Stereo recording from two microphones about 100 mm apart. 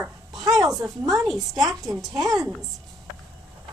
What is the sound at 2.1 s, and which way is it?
Speech, 40° right (ahead or behind).